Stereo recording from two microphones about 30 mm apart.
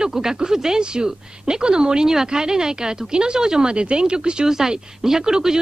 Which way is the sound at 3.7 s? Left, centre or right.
Right.